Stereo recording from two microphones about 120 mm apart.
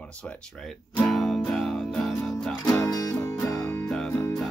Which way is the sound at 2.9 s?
25° left (ahead or behind).